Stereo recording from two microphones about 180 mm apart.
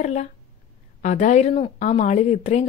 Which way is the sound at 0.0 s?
40° left (ahead or behind).